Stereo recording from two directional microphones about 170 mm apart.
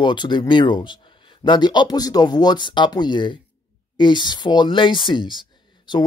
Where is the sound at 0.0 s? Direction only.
25° left (ahead or behind).